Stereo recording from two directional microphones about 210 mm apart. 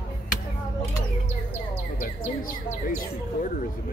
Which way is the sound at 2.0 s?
40° left (ahead or behind).